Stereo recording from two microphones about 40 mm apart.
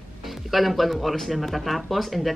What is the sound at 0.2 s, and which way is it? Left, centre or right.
Speech, centre.